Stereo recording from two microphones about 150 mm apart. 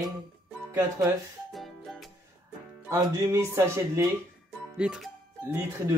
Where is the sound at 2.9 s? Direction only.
20° right (ahead or behind).